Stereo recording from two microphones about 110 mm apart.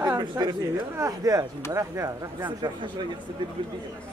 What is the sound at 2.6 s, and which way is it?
Speech, 45° right (ahead or behind).